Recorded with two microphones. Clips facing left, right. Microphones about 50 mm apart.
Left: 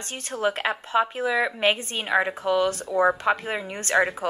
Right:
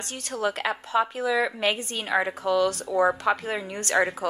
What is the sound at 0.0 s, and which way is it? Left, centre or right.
A woman's voice, left.